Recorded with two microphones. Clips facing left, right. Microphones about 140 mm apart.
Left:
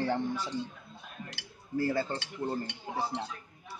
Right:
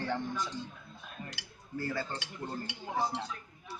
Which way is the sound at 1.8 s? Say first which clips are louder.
Left 6 dB; 30° left (ahead or behind).